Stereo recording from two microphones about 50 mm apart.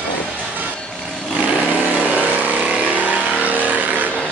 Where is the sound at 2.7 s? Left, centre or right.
Right.